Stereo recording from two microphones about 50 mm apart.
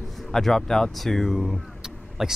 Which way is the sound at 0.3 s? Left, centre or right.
Centre.